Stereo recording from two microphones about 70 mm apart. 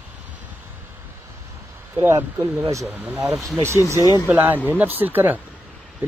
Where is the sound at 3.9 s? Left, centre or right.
Left.